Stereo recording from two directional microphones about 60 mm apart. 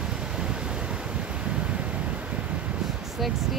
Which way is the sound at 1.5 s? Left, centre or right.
Centre.